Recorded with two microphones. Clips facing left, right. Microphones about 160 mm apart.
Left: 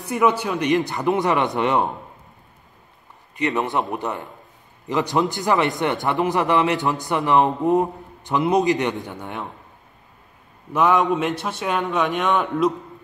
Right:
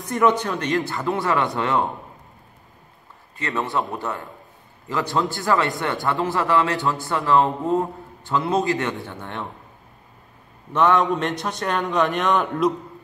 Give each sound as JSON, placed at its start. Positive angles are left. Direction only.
{"t": 0.0, "sound": "a man's voice", "side_deg": 10}
{"t": 3.3, "sound": "speech", "side_deg": 20}
{"t": 10.7, "sound": "a man's voice", "side_deg": 5}